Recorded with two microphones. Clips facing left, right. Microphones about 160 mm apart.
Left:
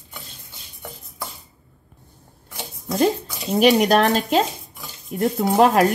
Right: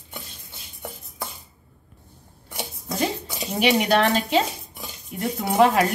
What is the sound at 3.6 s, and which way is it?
Cutlery, 40° left (ahead or behind).